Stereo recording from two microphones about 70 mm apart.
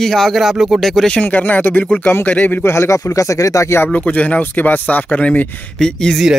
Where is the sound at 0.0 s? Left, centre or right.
Centre.